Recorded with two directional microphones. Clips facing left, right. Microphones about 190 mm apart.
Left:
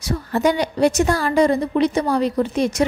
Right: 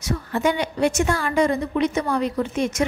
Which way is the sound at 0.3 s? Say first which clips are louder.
Left 4 dB; 35° left (ahead or behind).